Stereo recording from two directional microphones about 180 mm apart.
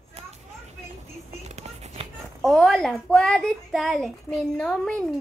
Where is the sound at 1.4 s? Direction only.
40° right (ahead or behind).